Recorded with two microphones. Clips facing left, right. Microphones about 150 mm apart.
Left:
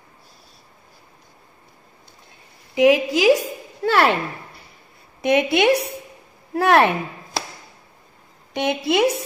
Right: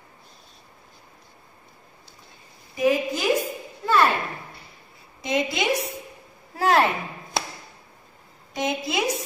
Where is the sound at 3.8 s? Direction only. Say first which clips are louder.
Left 3 dB; 75° left (ahead or behind).